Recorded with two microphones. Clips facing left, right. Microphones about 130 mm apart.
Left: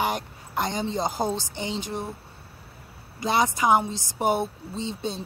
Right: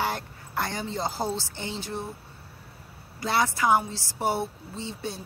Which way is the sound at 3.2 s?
20° left (ahead or behind).